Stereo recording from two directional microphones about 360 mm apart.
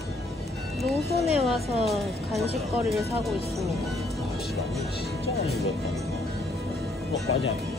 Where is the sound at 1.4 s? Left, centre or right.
Centre.